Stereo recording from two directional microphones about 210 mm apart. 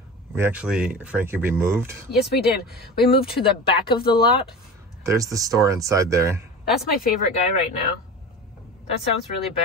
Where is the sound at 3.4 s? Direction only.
25° left (ahead or behind).